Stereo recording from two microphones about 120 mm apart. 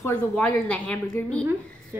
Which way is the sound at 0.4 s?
10° left (ahead or behind).